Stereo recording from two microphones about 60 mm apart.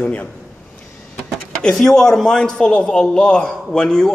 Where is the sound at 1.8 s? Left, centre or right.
Centre.